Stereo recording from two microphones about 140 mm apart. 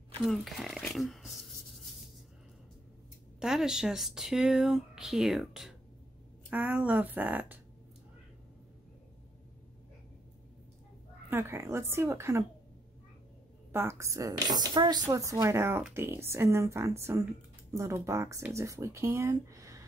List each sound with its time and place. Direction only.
0.2 s speech: centre (ahead or behind)
3.3 s speech: 5° right (ahead or behind)
11.2 s speech: 20° right (ahead or behind)
13.7 s speech: 20° right (ahead or behind)